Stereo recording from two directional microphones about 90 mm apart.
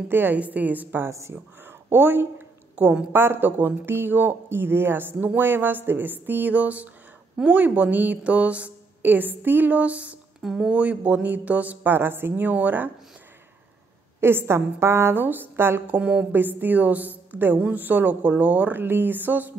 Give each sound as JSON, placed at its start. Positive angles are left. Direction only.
{"t": 0.1, "sound": "a woman's voice", "side_deg": -20}
{"t": 14.2, "sound": "speech", "side_deg": -25}
{"t": 16.0, "sound": "speech", "side_deg": -15}